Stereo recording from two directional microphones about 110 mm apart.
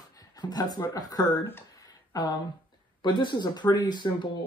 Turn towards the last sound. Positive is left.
turn(degrees=45)  # may be behind; listen again after turning